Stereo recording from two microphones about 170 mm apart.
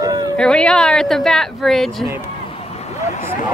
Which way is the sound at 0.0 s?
20° right (ahead or behind).